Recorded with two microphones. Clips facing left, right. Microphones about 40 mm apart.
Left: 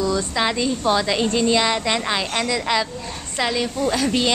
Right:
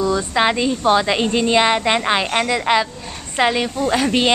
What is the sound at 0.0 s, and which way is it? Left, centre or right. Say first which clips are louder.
A woman's voice: right 4 dB; right.